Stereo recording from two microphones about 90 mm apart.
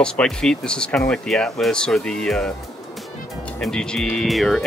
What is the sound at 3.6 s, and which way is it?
Speech, 5° left (ahead or behind).